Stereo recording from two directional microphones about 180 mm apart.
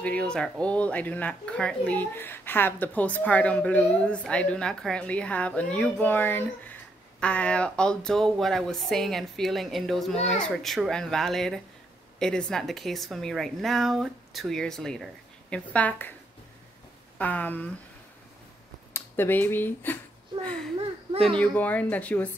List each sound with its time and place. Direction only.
0.0 s speech: 5° left (ahead or behind)
17.2 s speech: 10° left (ahead or behind)
18.9 s speech: 10° left (ahead or behind)
21.1 s a child's voice: 30° right (ahead or behind)
21.5 s speech: 10° left (ahead or behind)